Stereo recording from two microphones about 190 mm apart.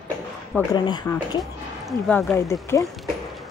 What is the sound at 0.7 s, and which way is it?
Speech, 25° left (ahead or behind).